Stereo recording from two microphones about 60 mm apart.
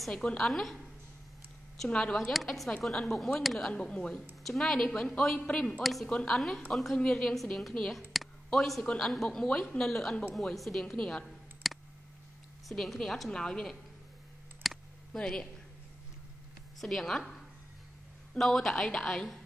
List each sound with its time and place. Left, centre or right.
0.1 s speech: centre
0.4 s a woman's voice: centre
1.9 s speech: centre
2.3 s a woman's voice: centre
3.7 s speech: centre
4.1 s a woman's voice: centre
14.6 s a sound: centre
15.1 s speech: centre
16.8 s a woman's voice: centre
18.4 s speech: centre